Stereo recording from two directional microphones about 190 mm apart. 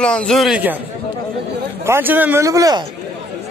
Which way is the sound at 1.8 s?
10° right (ahead or behind).